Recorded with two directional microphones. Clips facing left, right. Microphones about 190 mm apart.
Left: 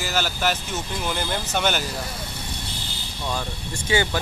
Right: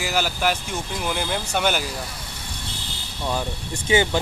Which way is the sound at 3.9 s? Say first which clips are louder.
Right 3 dB; 20° right (ahead or behind).